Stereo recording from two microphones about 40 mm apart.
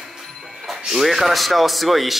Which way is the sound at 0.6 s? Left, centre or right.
Centre.